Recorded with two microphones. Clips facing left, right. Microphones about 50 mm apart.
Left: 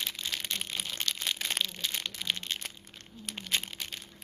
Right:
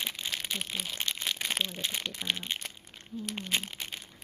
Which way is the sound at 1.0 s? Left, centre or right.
Centre.